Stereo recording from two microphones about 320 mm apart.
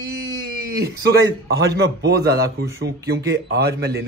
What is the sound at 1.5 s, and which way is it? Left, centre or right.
A man's voice, right.